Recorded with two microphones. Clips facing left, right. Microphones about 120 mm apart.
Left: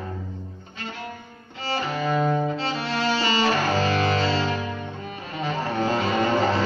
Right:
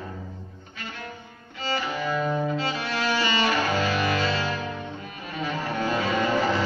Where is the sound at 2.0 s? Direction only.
30° left (ahead or behind).